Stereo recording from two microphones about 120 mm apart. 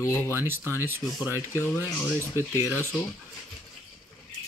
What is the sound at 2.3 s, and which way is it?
Speech, 20° right (ahead or behind).